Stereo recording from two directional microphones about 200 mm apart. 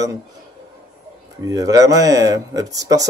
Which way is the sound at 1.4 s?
20° right (ahead or behind).